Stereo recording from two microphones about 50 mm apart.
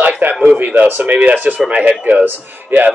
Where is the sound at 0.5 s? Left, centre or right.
Right.